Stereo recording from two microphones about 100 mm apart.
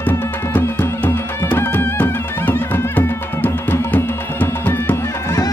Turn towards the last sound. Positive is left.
turn(degrees=20)  # may be behind; listen again after turning